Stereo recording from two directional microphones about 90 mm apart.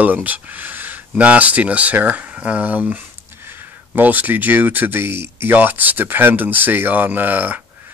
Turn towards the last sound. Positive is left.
turn(degrees=-20)  # may be behind; listen again after turning